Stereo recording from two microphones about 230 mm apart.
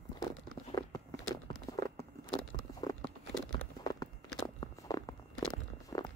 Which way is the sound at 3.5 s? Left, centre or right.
Centre.